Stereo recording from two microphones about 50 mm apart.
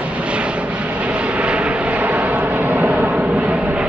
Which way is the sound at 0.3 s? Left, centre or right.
Right.